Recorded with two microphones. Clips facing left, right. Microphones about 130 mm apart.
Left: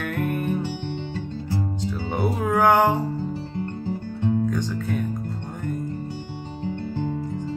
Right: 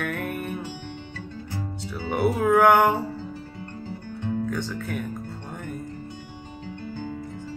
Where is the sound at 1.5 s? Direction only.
20° left (ahead or behind).